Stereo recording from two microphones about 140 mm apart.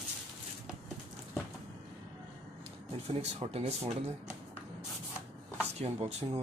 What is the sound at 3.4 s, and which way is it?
Speech, 40° right (ahead or behind).